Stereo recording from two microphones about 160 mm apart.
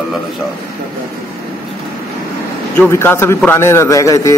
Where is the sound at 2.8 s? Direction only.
15° left (ahead or behind).